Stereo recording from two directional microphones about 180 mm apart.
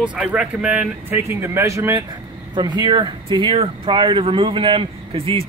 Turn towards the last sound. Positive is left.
turn(degrees=-30)  # may be behind; listen again after turning